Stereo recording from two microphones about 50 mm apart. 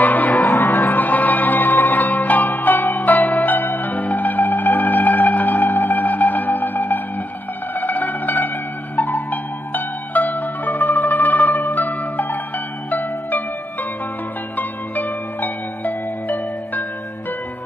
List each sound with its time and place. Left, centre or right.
0.0 s music: left
7.7 s zither: left
8.9 s music: left
14.6 s music: left